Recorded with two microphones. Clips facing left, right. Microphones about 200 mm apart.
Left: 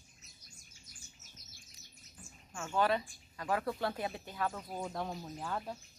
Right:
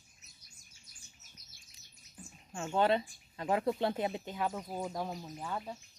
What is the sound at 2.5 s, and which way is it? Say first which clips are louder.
Speech: right 3 dB; 25° right (ahead or behind).